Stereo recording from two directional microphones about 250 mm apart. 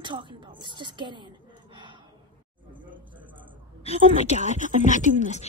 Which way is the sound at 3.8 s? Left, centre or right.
Left.